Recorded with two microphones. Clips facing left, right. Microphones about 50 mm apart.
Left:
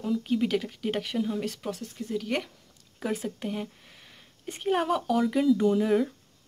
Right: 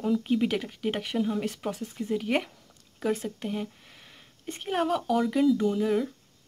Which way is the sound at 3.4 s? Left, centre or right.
Centre.